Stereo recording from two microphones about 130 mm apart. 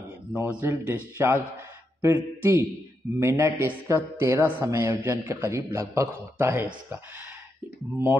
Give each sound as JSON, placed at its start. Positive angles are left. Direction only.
{"t": 0.4, "sound": "a man's voice", "side_deg": -15}